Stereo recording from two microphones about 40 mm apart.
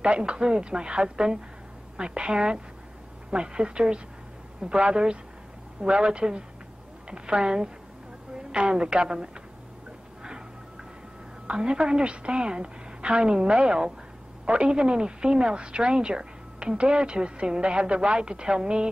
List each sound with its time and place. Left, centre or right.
0.0 s a woman's voice: right
11.4 s a woman's voice: right